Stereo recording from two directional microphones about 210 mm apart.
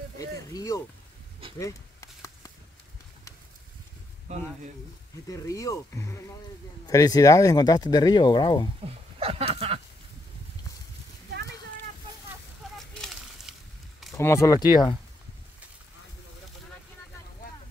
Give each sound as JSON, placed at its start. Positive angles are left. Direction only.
{"t": 0.2, "sound": "a sound", "side_deg": 15}
{"t": 4.3, "sound": "speech", "side_deg": -35}
{"t": 5.3, "sound": "speech", "side_deg": 15}
{"t": 8.8, "sound": "speech", "side_deg": -25}
{"t": 12.7, "sound": "a sound", "side_deg": 0}
{"t": 14.1, "sound": "speech", "side_deg": 15}